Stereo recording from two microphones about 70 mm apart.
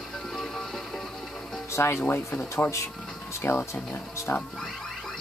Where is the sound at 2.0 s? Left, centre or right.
Left.